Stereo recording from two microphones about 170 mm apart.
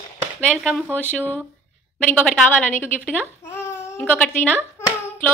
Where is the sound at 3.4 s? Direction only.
15° left (ahead or behind).